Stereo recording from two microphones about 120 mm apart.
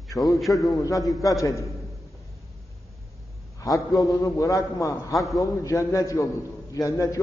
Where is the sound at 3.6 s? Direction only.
30° left (ahead or behind).